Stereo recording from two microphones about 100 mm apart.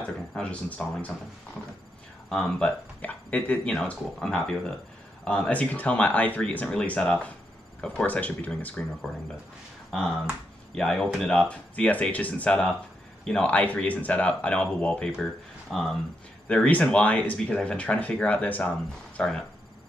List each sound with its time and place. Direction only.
0.3 s speech: 10° left (ahead or behind)
2.2 s speech: 5° left (ahead or behind)
9.8 s speech: 5° left (ahead or behind)